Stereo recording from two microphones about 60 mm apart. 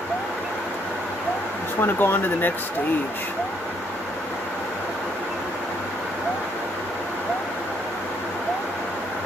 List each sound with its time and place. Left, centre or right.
1.8 s speech: left